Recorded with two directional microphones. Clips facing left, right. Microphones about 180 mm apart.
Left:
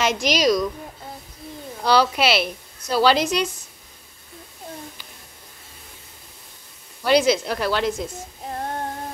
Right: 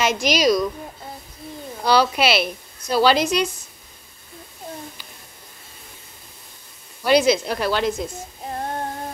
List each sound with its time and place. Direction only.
0.0 s a woman's voice: 5° right (ahead or behind)
1.9 s a woman's voice: 15° right (ahead or behind)
7.1 s a woman's voice: 15° right (ahead or behind)